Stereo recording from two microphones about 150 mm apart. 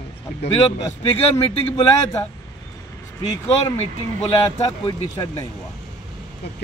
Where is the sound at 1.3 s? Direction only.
20° left (ahead or behind).